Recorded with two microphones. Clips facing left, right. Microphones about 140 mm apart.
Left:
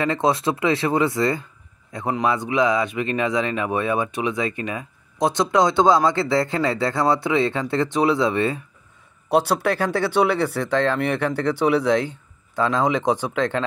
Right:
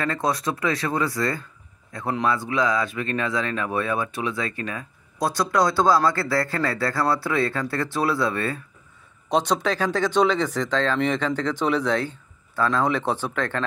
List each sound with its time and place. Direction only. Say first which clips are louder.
0.0 s speech: left 4 dB; 20° left (ahead or behind)
9.3 s speech: left 3 dB; 10° left (ahead or behind)